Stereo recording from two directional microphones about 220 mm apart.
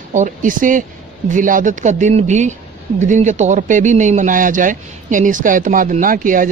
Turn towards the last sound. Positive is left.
turn(degrees=-40)  # may be behind; listen again after turning